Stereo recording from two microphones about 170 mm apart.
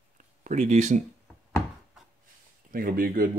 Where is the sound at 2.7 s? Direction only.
55° right (ahead or behind).